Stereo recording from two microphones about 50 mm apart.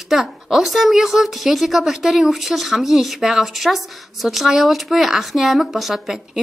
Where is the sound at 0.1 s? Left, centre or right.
Centre.